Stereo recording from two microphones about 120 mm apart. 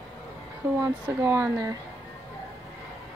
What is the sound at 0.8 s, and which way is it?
Speech, 20° right (ahead or behind).